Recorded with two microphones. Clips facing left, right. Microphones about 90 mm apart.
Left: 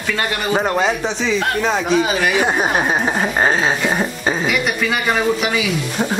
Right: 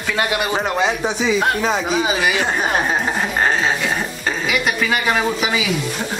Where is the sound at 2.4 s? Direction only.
10° left (ahead or behind).